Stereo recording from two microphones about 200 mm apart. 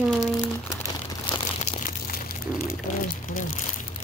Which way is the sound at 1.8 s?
45° left (ahead or behind).